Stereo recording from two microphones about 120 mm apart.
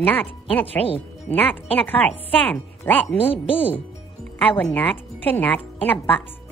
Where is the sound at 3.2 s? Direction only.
50° left (ahead or behind).